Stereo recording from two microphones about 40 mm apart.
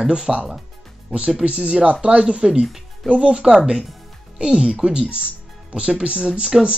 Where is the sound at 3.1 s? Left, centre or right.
Right.